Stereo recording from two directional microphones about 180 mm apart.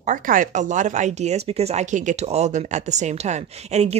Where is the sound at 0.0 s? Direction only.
45° right (ahead or behind).